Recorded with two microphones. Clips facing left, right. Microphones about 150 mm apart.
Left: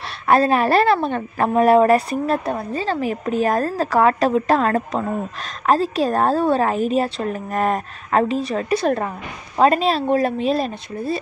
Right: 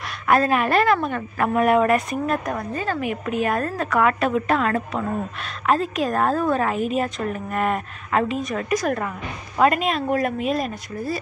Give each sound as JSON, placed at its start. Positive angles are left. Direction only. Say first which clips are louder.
{"t": 0.3, "sound": "a woman's voice", "louder": "left 3 dB", "side_deg": 30}